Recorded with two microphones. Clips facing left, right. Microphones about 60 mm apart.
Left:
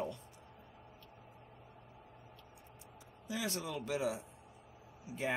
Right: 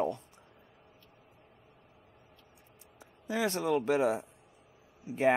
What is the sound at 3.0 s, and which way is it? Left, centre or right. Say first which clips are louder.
Speech: right 9 dB; right.